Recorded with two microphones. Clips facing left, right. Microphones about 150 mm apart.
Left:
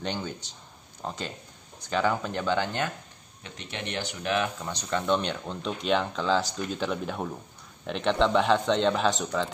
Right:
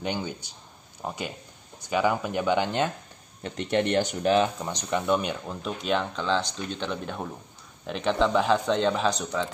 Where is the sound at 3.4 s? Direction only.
50° right (ahead or behind).